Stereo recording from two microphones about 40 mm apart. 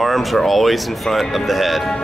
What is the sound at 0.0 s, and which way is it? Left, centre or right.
Speech, centre.